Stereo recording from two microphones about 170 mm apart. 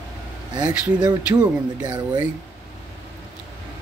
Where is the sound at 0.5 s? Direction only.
25° right (ahead or behind).